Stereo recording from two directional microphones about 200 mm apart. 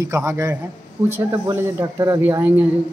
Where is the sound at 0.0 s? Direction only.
15° right (ahead or behind).